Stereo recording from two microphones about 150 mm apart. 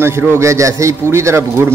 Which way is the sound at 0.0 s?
15° right (ahead or behind).